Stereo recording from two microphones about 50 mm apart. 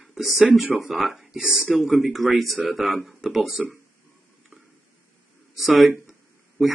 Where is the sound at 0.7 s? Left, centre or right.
Centre.